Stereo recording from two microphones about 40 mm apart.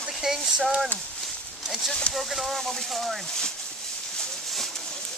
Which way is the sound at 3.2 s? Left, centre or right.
Centre.